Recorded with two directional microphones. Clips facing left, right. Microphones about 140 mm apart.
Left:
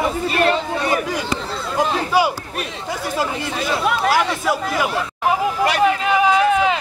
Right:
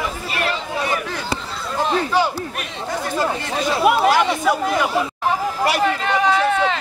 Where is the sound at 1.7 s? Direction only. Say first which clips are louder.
Left 1 dB; 10° left (ahead or behind).